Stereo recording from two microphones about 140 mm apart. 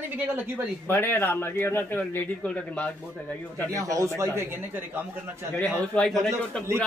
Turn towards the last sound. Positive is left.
turn(degrees=5)  # may be behind; listen again after turning